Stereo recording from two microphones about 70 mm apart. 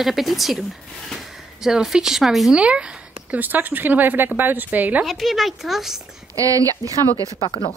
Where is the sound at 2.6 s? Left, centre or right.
Centre.